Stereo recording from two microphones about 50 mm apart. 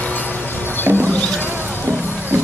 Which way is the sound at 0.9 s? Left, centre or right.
Right.